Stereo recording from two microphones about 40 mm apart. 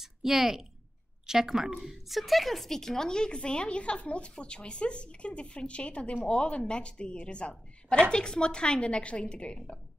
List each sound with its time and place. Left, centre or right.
0.0 s a woman's voice: centre; by 9.8 s left